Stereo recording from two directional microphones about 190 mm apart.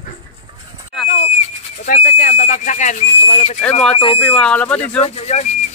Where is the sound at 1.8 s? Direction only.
40° left (ahead or behind).